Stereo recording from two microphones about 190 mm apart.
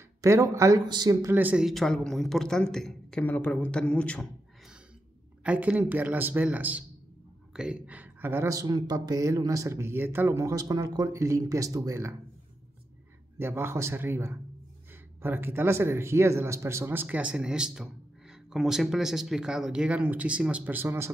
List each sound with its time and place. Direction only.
0.2 s speech: 15° right (ahead or behind); by 4.7 s 5° left (ahead or behind)
5.4 s speech: 5° right (ahead or behind)
13.4 s speech: 10° right (ahead or behind)